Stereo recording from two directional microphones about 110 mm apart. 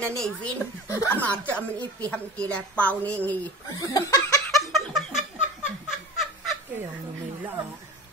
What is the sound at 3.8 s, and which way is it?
Speech, 35° left (ahead or behind).